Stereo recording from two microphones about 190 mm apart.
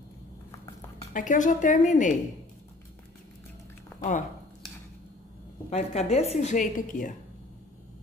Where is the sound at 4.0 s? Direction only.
40° left (ahead or behind).